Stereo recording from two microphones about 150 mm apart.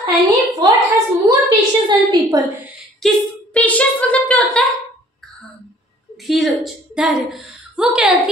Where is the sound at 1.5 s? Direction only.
30° right (ahead or behind).